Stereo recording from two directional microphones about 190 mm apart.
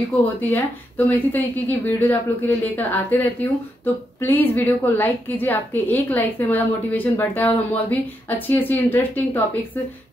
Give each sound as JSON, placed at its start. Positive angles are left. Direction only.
{"t": 0.4, "sound": "a woman's voice", "side_deg": 10}